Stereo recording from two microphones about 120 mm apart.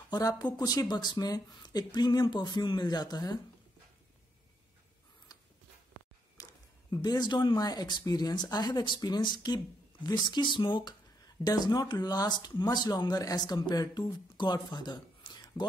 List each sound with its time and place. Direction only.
0.1 s speech: 30° left (ahead or behind)
6.3 s speech: 30° left (ahead or behind)